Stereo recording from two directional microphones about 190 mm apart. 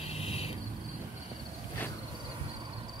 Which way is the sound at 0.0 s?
30° left (ahead or behind).